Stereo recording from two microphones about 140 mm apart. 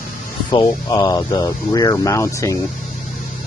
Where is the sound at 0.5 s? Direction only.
30° left (ahead or behind).